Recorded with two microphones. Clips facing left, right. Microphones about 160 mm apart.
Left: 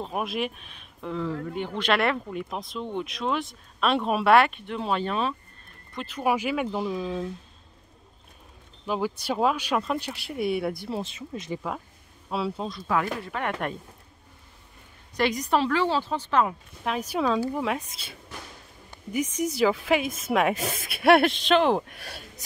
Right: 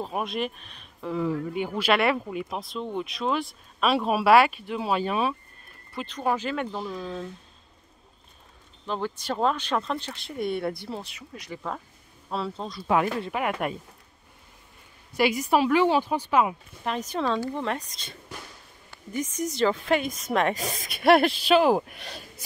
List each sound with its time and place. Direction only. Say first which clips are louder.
0.0 s speech: even; 5° left (ahead or behind)
5.9 s speech: left 1 dB; 5° left (ahead or behind)
8.8 s speech: left 2 dB; 10° left (ahead or behind)
11.0 s speech: left 6 dB; 25° left (ahead or behind)
12.3 s speech: left 2 dB; 5° left (ahead or behind)
12.8 s speech: right 4 dB; 20° right (ahead or behind)
13.4 s a woman's voice: right 1 dB; 5° right (ahead or behind)
15.1 s a woman's voice: right 2 dB; 5° right (ahead or behind)
16.8 s speech: left 1 dB; 5° left (ahead or behind)